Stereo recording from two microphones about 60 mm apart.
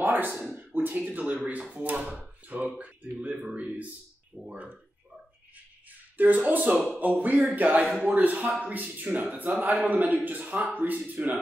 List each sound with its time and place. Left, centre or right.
0.0 s a sound: right
0.5 s speech: right
6.1 s speech: right